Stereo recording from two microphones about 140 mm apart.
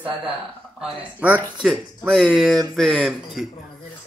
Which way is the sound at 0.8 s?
10° right (ahead or behind).